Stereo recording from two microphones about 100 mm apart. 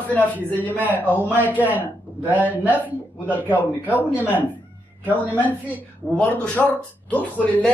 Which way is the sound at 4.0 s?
15° right (ahead or behind).